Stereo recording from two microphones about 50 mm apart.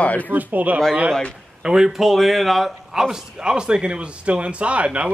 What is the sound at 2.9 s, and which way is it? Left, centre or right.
Speech, centre.